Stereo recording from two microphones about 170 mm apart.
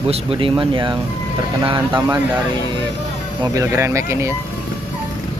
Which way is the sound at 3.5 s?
15° right (ahead or behind).